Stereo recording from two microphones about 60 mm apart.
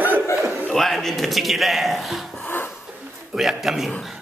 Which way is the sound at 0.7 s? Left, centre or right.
Centre.